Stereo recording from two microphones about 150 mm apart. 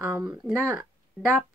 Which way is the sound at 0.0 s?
25° right (ahead or behind).